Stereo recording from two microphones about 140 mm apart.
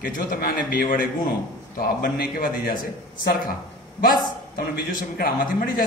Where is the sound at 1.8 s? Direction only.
90° left.